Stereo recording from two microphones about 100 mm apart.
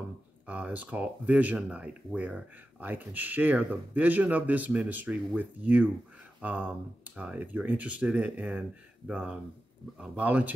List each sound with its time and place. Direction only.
0.5 s speech: 15° right (ahead or behind)